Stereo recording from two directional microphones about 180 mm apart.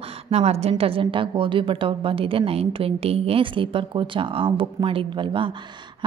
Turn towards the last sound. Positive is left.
turn(degrees=-30)  # may be behind; listen again after turning